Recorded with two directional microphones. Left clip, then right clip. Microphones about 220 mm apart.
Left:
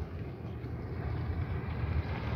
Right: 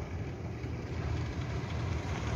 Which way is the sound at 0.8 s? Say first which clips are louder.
Right 1 dB; 25° right (ahead or behind).